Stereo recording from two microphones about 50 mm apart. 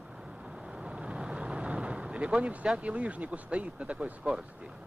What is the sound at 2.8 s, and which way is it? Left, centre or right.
Speech, right.